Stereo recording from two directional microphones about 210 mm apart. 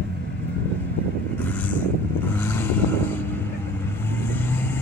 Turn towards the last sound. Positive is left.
turn(degrees=10)  # may be behind; listen again after turning